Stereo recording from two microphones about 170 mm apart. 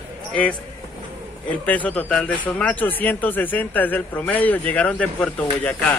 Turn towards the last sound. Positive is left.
turn(degrees=10)  # may be behind; listen again after turning